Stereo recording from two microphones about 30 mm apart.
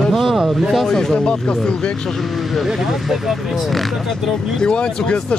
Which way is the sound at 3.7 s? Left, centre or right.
Centre.